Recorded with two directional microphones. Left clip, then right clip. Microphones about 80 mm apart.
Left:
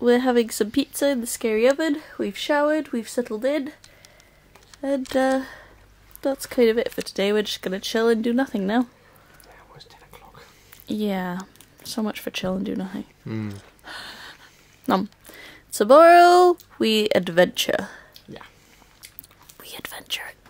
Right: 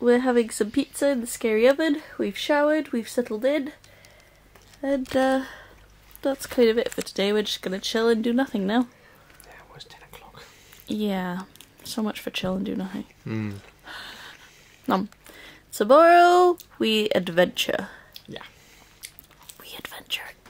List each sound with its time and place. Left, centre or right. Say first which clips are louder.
0.0 s speech: left 1 dB; left
1.7 s speech: even; centre
5.1 s speech: left 1 dB; centre
9.5 s whispering: right 3 dB; centre
10.9 s speech: left 1 dB; left
13.2 s speech: right 1 dB; centre
13.5 s a sound: left 1 dB; left
14.9 s speech: left 2 dB; left
19.5 s whispering: left 2 dB; left